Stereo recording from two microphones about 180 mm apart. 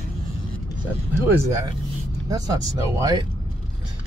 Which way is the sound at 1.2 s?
20° right (ahead or behind).